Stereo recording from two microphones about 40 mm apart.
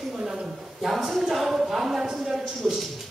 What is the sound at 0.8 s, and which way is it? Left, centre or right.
A woman's voice, centre.